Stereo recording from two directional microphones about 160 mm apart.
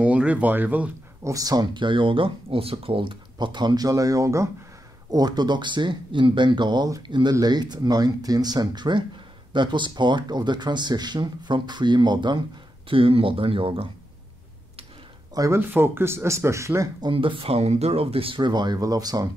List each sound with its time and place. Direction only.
0.0 s speech: 10° right (ahead or behind)
1.3 s speech: 25° right (ahead or behind)
15.3 s speech: 20° right (ahead or behind)
17.1 s speech: 35° right (ahead or behind)